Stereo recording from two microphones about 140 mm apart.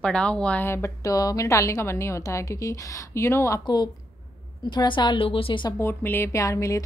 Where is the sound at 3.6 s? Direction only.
30° left (ahead or behind).